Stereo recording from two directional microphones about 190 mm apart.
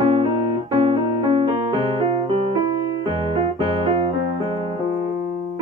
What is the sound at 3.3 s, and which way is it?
Keyboard, 25° right (ahead or behind).